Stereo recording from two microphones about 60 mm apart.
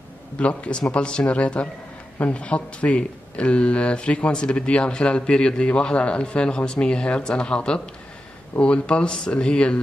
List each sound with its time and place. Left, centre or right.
0.4 s speech: left